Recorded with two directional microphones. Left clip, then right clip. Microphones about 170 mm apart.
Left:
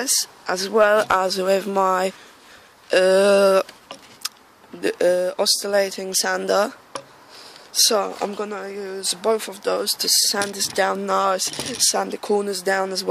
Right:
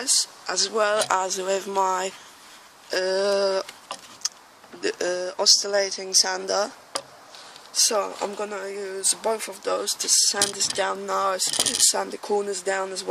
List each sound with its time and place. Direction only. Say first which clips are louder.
0.0 s speech: left 1 dB; 60° left (ahead or behind); by 3.6 s 45° left (ahead or behind)
4.8 s speech: left 7 dB; 45° left (ahead or behind)
7.8 s speech: left 4 dB; 45° left (ahead or behind)